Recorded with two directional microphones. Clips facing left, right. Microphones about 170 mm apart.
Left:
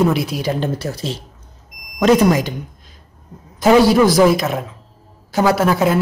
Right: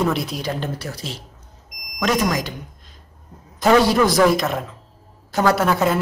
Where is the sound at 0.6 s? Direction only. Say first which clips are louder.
Left 6 dB; 25° left (ahead or behind).